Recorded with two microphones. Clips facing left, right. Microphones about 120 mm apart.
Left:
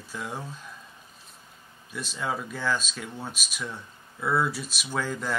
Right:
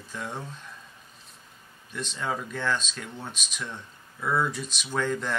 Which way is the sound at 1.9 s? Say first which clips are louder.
Even; 5° left (ahead or behind).